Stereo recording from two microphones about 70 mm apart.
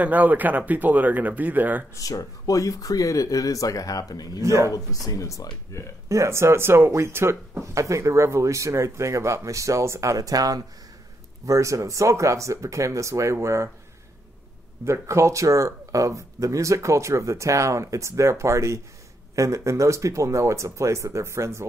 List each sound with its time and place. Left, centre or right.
0.0 s speech: right
2.0 s speech: left
4.4 s speech: right
4.7 s speech: left
6.0 s speech: right
7.7 s speech: right
14.9 s speech: right